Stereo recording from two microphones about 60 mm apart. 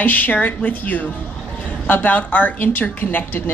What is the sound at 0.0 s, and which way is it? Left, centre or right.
A woman's voice, left.